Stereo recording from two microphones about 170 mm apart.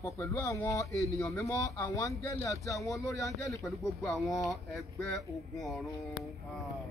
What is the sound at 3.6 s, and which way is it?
Speech, centre (ahead or behind).